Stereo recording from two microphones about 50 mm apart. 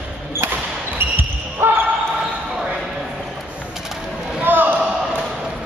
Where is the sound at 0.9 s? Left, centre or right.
Right.